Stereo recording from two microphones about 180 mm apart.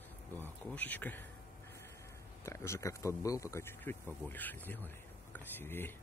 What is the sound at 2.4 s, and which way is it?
Speech, 15° left (ahead or behind).